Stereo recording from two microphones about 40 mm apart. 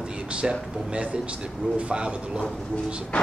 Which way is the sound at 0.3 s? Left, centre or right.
Right.